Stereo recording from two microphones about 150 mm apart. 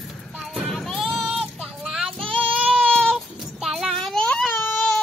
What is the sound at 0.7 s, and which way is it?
Child singing, centre (ahead or behind).